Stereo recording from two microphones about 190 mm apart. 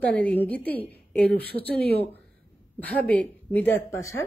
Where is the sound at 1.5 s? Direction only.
55° right (ahead or behind).